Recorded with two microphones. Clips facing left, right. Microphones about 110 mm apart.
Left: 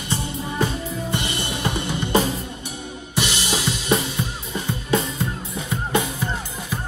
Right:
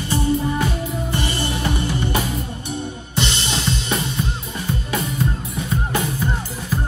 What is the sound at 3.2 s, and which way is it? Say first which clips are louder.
Drum kit: even; 10° left (ahead or behind).